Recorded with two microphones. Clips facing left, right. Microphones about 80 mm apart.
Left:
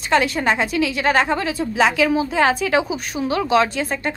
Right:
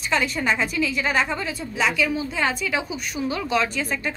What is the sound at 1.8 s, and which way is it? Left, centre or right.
A woman's voice, left.